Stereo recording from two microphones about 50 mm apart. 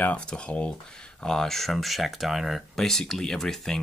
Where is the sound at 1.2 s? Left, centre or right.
Centre.